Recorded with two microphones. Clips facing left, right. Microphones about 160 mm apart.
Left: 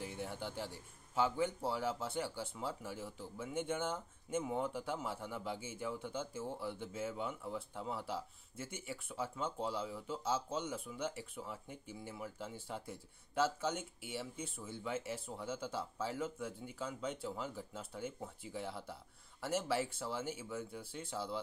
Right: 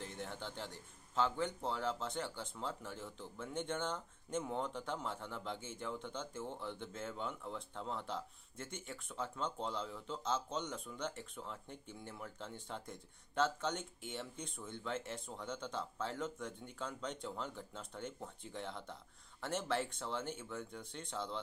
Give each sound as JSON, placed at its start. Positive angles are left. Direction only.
{"t": 0.0, "sound": "a man's voice", "side_deg": 10}